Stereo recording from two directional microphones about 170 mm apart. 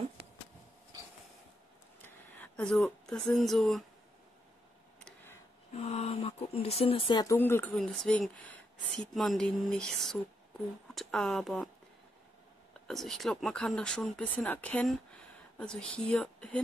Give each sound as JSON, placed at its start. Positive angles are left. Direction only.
{"t": 2.0, "sound": "a sound", "side_deg": 10}
{"t": 5.8, "sound": "speech", "side_deg": 40}
{"t": 7.3, "sound": "speech", "side_deg": 15}
{"t": 12.8, "sound": "speech", "side_deg": 0}